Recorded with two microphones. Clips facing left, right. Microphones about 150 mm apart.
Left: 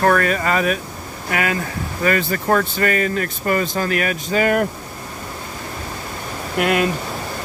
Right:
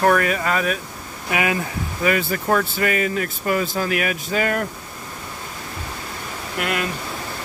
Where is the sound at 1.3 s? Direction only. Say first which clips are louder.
Even; 15° right (ahead or behind).